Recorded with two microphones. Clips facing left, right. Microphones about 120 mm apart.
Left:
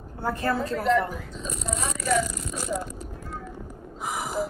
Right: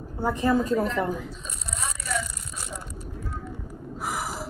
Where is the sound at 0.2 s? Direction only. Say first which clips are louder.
Right 3 dB; 15° right (ahead or behind).